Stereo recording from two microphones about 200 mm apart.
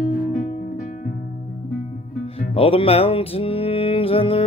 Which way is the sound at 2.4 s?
30° left (ahead or behind).